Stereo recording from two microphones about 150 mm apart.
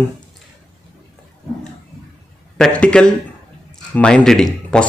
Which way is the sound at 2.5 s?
5° left (ahead or behind).